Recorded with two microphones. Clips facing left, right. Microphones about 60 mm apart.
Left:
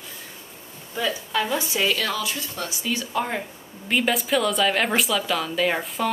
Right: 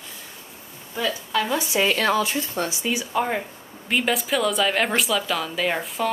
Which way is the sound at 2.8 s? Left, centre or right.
Centre.